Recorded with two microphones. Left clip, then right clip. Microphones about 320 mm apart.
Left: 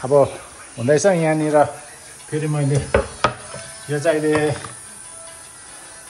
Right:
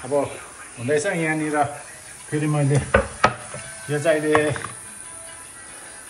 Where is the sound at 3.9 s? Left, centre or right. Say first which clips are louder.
Left 1 dB; centre.